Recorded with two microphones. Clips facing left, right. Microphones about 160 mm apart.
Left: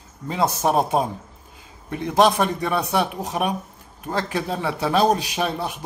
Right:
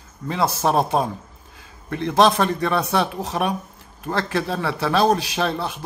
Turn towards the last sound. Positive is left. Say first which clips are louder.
# right 1 dB
turn(degrees=15)  # may be behind; listen again after turning